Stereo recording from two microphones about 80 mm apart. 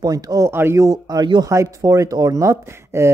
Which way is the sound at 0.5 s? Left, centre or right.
Right.